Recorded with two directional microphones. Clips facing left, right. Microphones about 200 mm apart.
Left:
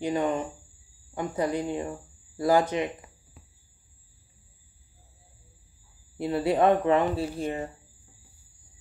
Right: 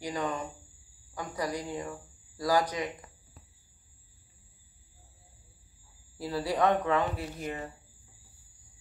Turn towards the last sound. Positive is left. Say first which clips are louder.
# left 7 dB
turn(degrees=30)  # may be behind; listen again after turning